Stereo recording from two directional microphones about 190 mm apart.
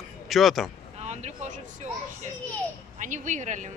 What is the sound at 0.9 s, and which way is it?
Speech, 35° right (ahead or behind).